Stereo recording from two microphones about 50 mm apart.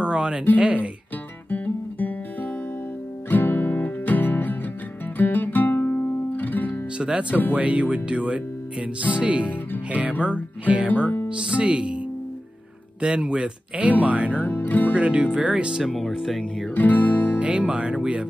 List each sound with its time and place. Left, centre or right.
0.0 s a sound: centre
1.5 s guitar: left
3.3 s music: left
7.0 s speech: right
10.9 s speech: left
11.2 s speech: right
13.0 s speech: centre
14.3 s speech: left
15.0 s speech: right
15.8 s speech: centre
16.7 s music: left
17.4 s speech: right